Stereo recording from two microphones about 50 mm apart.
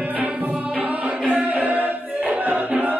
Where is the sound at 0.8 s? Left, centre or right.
Right.